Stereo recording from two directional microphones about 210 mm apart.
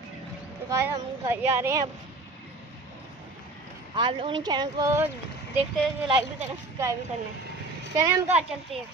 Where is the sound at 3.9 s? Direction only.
25° right (ahead or behind).